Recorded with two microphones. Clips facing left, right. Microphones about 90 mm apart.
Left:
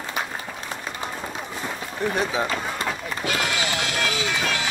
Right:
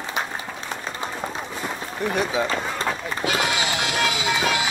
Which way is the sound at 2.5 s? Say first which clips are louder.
Right 2 dB; 35° right (ahead or behind).